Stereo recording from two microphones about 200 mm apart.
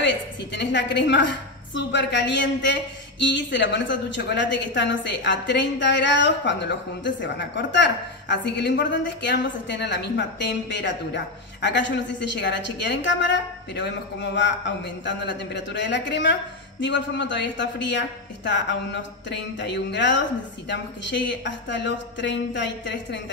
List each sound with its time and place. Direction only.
0.0 s a woman's voice: 60° left (ahead or behind)